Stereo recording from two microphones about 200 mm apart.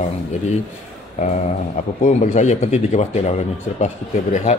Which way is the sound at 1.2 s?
35° left (ahead or behind).